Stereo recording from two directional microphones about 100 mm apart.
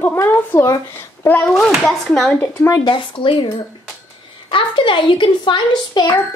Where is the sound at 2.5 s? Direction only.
30° left (ahead or behind).